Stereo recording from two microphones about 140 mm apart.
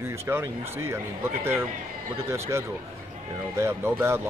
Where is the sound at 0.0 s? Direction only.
20° right (ahead or behind).